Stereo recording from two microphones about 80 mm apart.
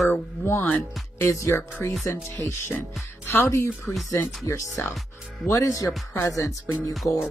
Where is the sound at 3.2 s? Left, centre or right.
Left.